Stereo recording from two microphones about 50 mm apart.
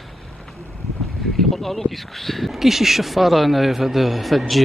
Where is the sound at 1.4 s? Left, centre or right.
Centre.